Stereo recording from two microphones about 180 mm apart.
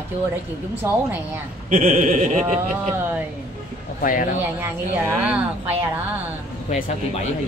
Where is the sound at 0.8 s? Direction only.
15° right (ahead or behind).